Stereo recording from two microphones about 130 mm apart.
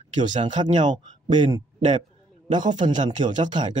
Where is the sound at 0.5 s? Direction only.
35° right (ahead or behind).